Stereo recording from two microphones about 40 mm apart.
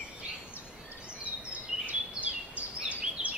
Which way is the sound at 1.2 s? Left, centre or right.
Right.